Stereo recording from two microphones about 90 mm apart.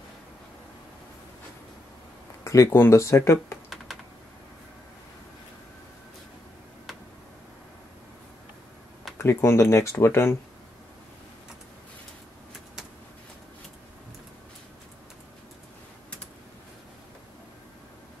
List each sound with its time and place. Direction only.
2.4 s speech: 35° left (ahead or behind)
3.7 s computer keyboard: centre (ahead or behind)
9.2 s speech: 30° left (ahead or behind)